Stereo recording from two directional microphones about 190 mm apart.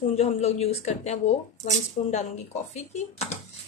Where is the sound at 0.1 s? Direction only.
35° left (ahead or behind).